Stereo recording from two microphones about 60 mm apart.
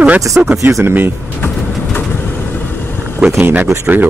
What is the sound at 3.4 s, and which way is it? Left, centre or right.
Speech, right.